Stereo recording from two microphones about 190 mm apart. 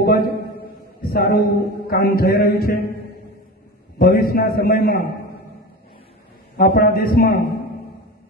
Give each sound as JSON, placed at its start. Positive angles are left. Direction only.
{"t": 0.0, "sound": "a man's voice", "side_deg": 55}
{"t": 4.0, "sound": "a man's voice", "side_deg": 50}
{"t": 6.5, "sound": "a man's voice", "side_deg": 50}